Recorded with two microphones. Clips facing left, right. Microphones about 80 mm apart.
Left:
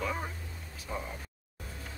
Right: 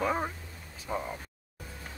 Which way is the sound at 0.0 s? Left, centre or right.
Right.